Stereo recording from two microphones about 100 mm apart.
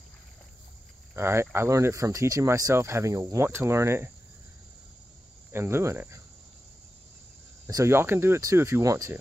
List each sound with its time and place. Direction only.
1.1 s speech: 25° right (ahead or behind)
5.5 s speech: 25° right (ahead or behind)
7.6 s speech: 30° right (ahead or behind)